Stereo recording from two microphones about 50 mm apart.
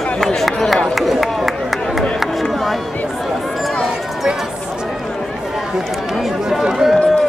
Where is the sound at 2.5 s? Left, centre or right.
Centre.